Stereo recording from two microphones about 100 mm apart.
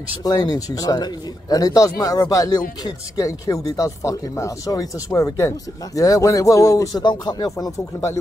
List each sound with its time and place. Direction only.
0.2 s speech: 40° left (ahead or behind)